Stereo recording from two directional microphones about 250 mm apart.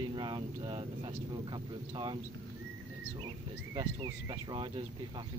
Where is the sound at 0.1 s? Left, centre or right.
Centre.